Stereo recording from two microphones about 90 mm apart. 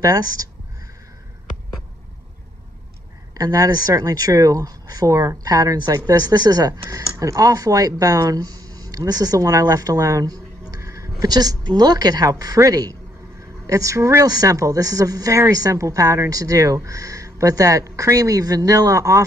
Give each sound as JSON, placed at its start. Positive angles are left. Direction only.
{"t": 0.0, "sound": "speech", "side_deg": -40}
{"t": 3.3, "sound": "speech", "side_deg": -45}
{"t": 6.9, "sound": "speech", "side_deg": -35}